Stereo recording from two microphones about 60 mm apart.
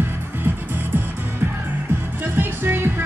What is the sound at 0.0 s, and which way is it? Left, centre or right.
Music, right.